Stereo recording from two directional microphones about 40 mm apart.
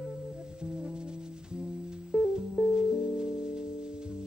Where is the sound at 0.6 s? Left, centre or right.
Right.